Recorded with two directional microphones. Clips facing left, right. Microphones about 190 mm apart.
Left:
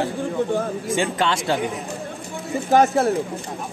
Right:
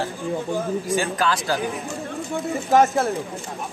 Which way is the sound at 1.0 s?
25° left (ahead or behind).